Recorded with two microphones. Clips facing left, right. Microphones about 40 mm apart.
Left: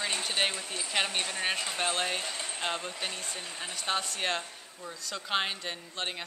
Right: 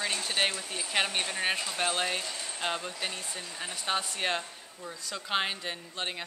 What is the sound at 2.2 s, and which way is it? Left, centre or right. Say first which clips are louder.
Speech: left 1 dB; left.